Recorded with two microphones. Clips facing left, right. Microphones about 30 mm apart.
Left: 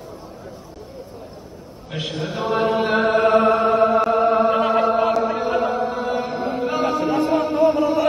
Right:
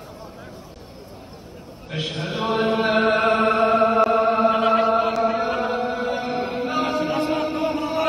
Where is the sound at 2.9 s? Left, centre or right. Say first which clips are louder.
Left 2 dB; right.